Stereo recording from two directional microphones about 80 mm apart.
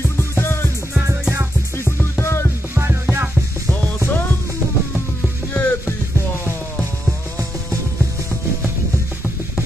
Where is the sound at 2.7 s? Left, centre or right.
Right.